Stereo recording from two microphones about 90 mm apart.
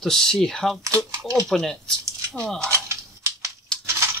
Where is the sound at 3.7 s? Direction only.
5° left (ahead or behind).